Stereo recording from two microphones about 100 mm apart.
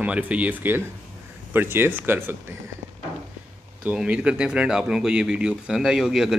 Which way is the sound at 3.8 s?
10° right (ahead or behind).